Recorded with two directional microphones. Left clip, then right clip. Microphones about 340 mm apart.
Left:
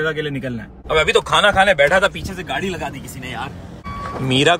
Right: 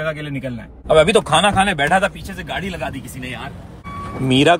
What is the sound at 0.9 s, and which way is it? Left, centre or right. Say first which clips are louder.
Speech: right 2 dB; centre.